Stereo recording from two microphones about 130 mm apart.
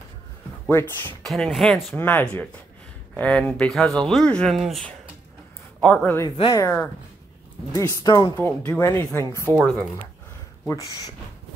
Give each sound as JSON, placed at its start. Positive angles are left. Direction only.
{"t": 0.7, "sound": "speech", "side_deg": 15}
{"t": 1.2, "sound": "a man's voice", "side_deg": 0}
{"t": 6.5, "sound": "speech", "side_deg": 20}
{"t": 8.0, "sound": "speech", "side_deg": 30}
{"t": 8.4, "sound": "speech", "side_deg": 15}
{"t": 9.4, "sound": "speech", "side_deg": -25}
{"t": 10.7, "sound": "speech", "side_deg": 25}